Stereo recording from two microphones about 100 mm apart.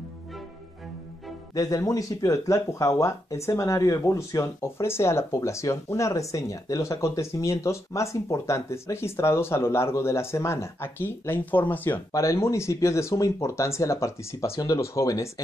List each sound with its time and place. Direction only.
1.5 s speech: 35° left (ahead or behind); by 12.0 s 20° left (ahead or behind)
12.1 s speech: 30° left (ahead or behind)